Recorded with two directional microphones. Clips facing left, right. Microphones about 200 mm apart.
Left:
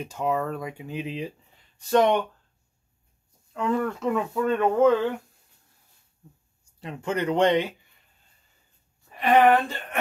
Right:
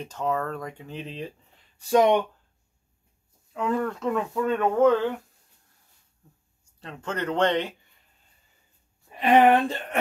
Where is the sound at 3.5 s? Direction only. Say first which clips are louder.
Left 1 dB; centre (ahead or behind).